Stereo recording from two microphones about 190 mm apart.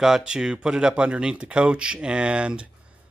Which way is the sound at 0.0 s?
5° right (ahead or behind).